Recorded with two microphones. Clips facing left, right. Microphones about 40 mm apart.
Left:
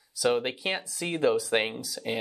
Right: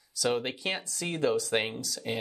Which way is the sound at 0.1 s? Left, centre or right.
Centre.